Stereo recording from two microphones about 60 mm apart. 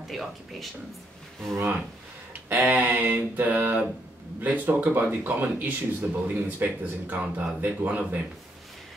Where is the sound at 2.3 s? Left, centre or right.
Right.